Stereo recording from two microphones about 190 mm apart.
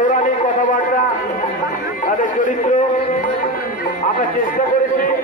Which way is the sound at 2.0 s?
45° left (ahead or behind).